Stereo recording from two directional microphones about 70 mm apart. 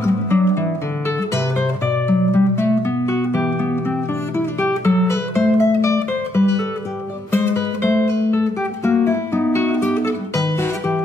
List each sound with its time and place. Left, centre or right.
0.0 s music: left
2.0 s music: left
7.3 s guitar: left
10.0 s music: left